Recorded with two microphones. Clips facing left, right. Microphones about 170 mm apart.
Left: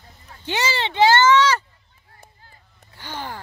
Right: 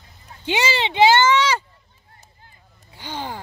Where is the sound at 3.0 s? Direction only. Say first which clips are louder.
Right 2 dB; 15° right (ahead or behind).